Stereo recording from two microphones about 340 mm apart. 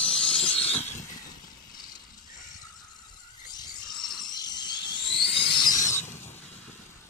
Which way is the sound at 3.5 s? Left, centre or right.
Centre.